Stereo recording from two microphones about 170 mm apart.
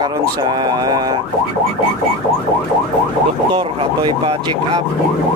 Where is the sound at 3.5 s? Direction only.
30° right (ahead or behind).